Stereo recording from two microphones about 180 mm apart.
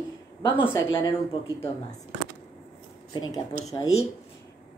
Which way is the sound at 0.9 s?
25° left (ahead or behind).